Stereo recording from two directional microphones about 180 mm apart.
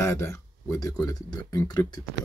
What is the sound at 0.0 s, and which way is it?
Speech, 15° left (ahead or behind).